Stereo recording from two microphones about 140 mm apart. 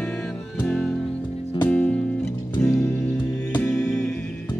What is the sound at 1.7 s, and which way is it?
Music, 10° left (ahead or behind).